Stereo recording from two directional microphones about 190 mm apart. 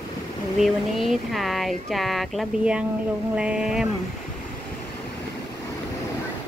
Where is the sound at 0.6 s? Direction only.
Centre (ahead or behind).